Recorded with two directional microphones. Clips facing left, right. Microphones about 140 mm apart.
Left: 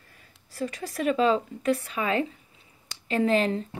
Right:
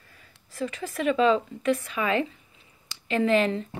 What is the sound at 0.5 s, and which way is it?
A woman's voice, 35° left (ahead or behind).